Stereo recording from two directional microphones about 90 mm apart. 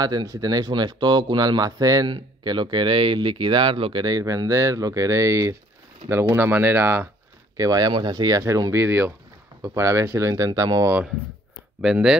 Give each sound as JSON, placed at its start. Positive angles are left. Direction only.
{"t": 0.0, "sound": "speech", "side_deg": -45}
{"t": 2.0, "sound": "speech", "side_deg": -60}
{"t": 7.5, "sound": "speech", "side_deg": -40}
{"t": 7.9, "sound": "speech", "side_deg": -55}
{"t": 8.4, "sound": "speech", "side_deg": -40}
{"t": 8.7, "sound": "speech", "side_deg": -25}
{"t": 11.8, "sound": "speech", "side_deg": -5}